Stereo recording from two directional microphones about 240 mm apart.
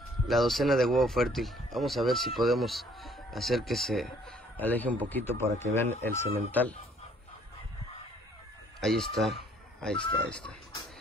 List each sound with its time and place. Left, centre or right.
0.3 s speech: centre
5.3 s a man's voice: right
6.0 s speech: centre
9.1 s speech: centre
9.9 s speech: centre